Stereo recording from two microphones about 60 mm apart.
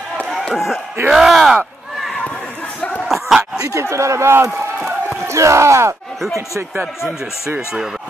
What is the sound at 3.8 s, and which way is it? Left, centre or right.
Speech, right.